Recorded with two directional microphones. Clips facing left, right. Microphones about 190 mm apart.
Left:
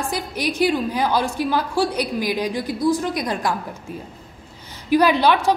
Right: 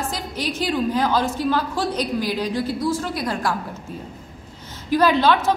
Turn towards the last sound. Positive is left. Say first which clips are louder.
# even
turn(degrees=15)  # may be behind; listen again after turning